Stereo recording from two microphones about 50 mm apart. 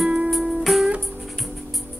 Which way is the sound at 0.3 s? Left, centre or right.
Centre.